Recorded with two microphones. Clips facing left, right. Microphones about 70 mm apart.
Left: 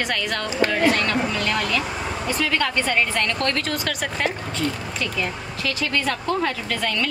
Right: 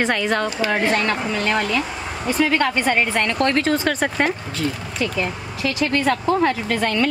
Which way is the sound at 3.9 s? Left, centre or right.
Right.